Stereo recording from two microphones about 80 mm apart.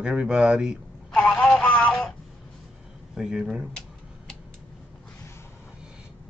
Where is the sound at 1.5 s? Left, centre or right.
Centre.